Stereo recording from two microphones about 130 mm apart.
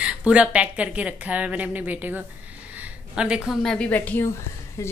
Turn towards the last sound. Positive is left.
turn(degrees=25)  # may be behind; listen again after turning